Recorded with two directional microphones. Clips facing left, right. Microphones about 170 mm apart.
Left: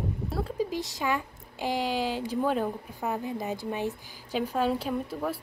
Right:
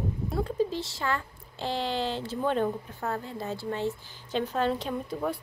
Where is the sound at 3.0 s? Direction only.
15° left (ahead or behind).